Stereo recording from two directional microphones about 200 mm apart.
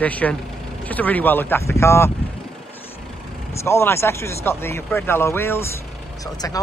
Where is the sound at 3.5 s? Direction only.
15° left (ahead or behind).